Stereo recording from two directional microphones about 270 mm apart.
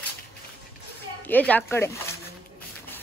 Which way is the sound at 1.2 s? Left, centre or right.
Centre.